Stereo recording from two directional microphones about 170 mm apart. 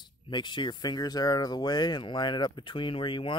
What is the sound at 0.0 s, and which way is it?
Speech, 25° left (ahead or behind).